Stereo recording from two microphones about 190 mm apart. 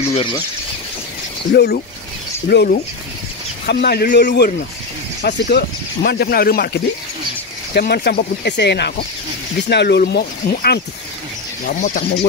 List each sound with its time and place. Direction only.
0.1 s speech: 25° left (ahead or behind)
1.5 s speech: 60° left (ahead or behind)
7.7 s speech: 55° left (ahead or behind)
11.6 s speech: 45° left (ahead or behind)